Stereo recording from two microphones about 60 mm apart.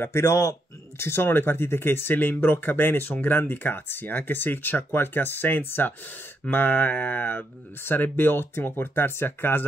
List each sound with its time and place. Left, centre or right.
0.0 s speech: left